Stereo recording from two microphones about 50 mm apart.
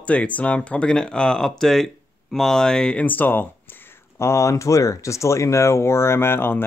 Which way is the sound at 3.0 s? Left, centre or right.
Left.